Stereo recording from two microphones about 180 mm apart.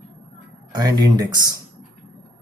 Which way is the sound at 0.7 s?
20° right (ahead or behind).